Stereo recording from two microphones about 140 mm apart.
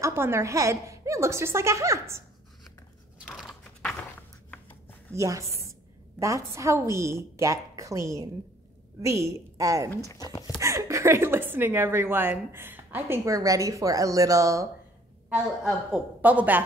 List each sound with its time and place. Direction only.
0.0 s a woman's voice: 20° right (ahead or behind)
3.3 s a sound: centre (ahead or behind)
5.1 s a woman's voice: 20° right (ahead or behind)
9.8 s speech: 25° left (ahead or behind)
10.6 s a woman's voice: 20° right (ahead or behind)
15.2 s a woman's voice: 5° right (ahead or behind)